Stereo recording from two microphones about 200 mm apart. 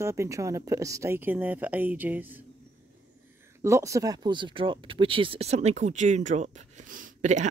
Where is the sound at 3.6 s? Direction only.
15° right (ahead or behind).